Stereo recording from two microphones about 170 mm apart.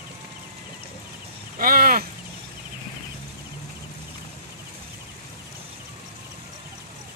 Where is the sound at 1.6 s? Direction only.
60° right (ahead or behind).